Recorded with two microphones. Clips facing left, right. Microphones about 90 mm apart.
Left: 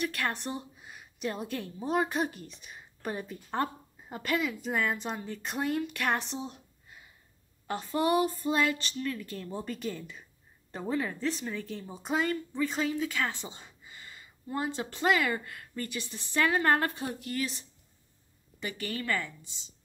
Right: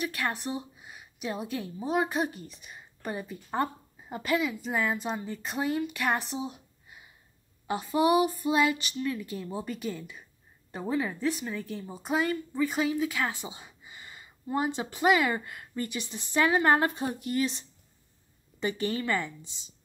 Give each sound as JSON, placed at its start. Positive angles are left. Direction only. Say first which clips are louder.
{"t": 0.0, "sound": "a woman's voice", "louder": "right 1 dB", "side_deg": -5}